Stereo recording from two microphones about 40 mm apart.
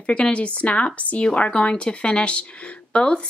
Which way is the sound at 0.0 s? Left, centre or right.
Left.